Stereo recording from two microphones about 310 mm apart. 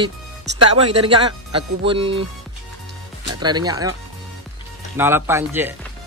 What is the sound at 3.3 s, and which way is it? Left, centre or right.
Speech, centre.